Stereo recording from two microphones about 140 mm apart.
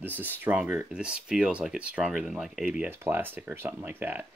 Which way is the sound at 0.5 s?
10° right (ahead or behind).